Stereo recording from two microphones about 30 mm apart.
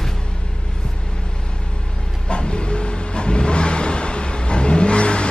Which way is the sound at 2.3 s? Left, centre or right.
Left.